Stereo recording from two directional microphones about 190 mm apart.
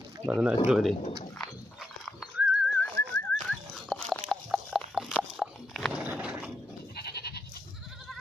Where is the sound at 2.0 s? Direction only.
Centre (ahead or behind).